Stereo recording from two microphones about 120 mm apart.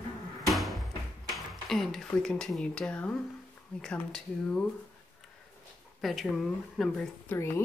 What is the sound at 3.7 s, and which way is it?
Speech, 5° left (ahead or behind).